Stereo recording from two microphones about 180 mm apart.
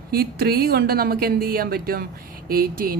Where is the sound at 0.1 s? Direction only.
60° right (ahead or behind).